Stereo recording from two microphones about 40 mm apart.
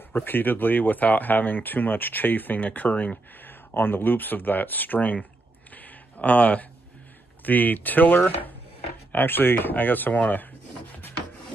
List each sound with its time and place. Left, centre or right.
0.1 s speech: left
3.4 s speech: left
5.8 s a sound: left
7.4 s speech: left
9.1 s speech: left